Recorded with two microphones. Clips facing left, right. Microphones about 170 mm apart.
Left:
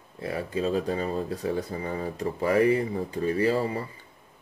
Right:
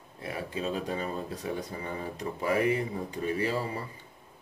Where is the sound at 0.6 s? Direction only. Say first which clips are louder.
Left 6 dB; 35° left (ahead or behind).